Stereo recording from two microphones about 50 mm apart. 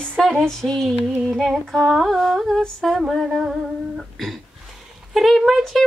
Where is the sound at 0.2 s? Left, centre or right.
Centre.